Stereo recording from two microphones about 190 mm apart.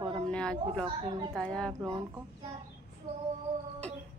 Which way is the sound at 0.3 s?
5° left (ahead or behind).